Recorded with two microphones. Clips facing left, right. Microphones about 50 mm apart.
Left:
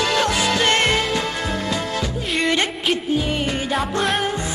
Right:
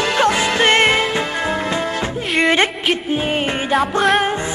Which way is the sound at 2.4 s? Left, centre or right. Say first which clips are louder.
Right 5 dB; right.